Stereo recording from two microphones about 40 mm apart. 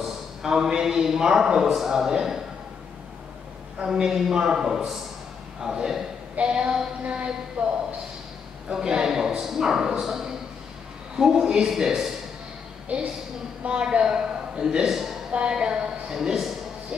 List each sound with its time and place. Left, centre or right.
0.4 s a man's voice: centre
3.8 s a man's voice: centre
6.3 s a sound: right
8.8 s a man's voice: centre
12.9 s a woman's voice: right
14.0 s a man's voice: centre
15.5 s a man's voice: centre